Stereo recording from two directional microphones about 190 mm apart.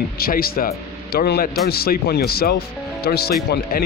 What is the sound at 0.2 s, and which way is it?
Speech, 50° left (ahead or behind).